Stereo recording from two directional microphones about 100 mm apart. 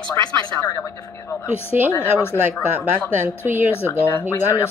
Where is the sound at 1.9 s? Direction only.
25° left (ahead or behind).